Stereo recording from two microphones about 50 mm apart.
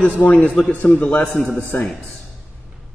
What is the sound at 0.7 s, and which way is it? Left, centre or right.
Speech, left.